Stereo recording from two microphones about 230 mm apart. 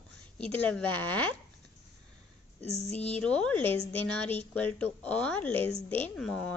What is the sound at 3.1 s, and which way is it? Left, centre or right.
A woman's voice, centre.